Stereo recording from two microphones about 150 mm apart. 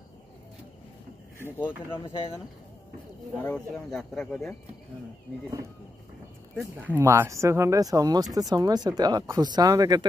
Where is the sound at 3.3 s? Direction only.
10° left (ahead or behind).